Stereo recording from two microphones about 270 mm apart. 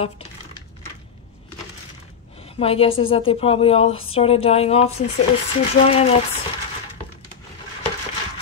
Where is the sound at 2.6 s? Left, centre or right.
Left.